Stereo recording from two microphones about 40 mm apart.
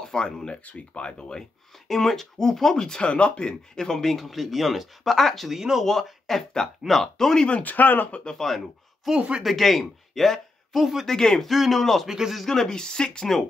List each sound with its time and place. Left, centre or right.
0.0 s speech: centre
0.7 s speech: left
1.9 s speech: centre
5.5 s speech: centre
5.9 s speech: centre
7.6 s speech: left
8.2 s speech: centre
8.5 s speech: centre
10.8 s speech: centre
11.1 s speech: centre
11.4 s speech: centre
11.8 s speech: centre
12.1 s speech: centre
12.4 s speech: centre